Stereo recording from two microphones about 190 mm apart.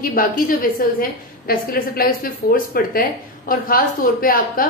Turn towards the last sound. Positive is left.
turn(degrees=50)  # may be behind; listen again after turning